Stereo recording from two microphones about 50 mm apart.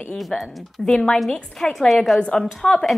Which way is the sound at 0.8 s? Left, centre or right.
Centre.